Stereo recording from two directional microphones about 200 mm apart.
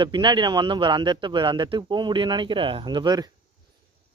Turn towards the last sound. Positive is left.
turn(degrees=-20)  # may be behind; listen again after turning